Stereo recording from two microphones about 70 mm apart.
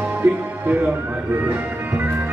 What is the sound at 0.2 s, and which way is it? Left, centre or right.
Music, right.